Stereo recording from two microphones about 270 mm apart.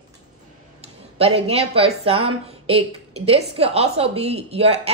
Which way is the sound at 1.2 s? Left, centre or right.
Right.